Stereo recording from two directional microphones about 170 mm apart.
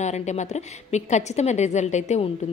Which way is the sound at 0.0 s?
45° left (ahead or behind).